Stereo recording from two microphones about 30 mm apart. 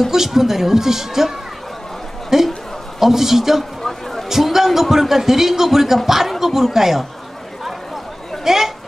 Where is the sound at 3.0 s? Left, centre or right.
Centre.